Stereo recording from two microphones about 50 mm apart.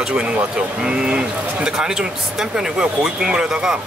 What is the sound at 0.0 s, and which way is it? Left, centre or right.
Speech, centre.